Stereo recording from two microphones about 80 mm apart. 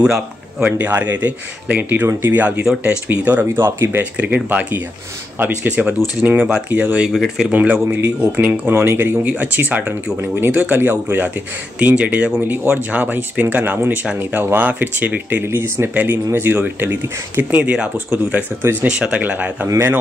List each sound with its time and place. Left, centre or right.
0.0 s a man's voice: centre; by 4.0 s right
4.0 s speech: centre
6.2 s speech: centre
7.1 s speech: centre
7.5 s speech: right